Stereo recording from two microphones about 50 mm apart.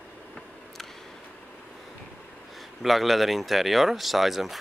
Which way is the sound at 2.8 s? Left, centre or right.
Centre.